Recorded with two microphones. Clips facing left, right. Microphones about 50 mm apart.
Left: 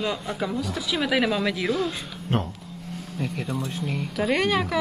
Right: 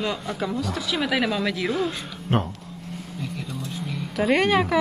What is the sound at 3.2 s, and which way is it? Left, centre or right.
Speech, left.